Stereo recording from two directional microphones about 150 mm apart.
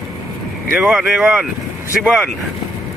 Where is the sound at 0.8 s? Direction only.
Centre (ahead or behind).